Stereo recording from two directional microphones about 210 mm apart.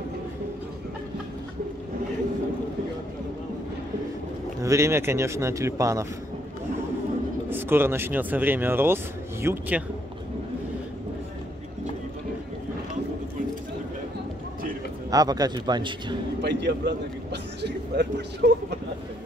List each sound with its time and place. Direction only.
4.6 s speech: 15° right (ahead or behind)
7.4 s speech: 10° right (ahead or behind)
15.0 s a man's voice: 15° right (ahead or behind)
16.3 s a man's voice: 55° right (ahead or behind)